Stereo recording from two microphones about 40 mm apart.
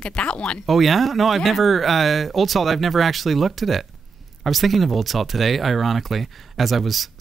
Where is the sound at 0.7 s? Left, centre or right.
Centre.